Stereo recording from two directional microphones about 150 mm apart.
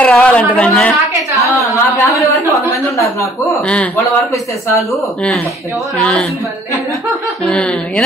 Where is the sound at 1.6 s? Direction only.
20° left (ahead or behind).